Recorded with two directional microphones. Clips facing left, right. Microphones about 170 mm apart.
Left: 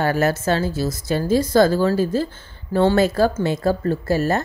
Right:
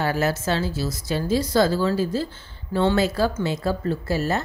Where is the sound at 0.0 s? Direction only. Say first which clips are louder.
Left 4 dB; 50° left (ahead or behind).